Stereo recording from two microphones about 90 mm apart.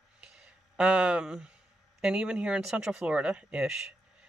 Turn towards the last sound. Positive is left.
turn(degrees=-10)  # may be behind; listen again after turning